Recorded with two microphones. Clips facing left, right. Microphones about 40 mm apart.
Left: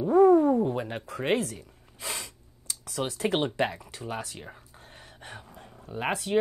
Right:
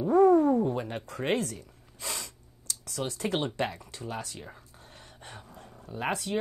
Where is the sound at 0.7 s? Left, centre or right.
Centre.